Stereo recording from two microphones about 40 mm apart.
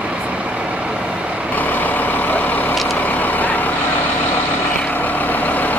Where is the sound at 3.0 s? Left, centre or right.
Left.